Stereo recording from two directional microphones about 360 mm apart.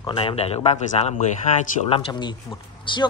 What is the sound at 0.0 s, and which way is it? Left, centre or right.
A man's voice, centre.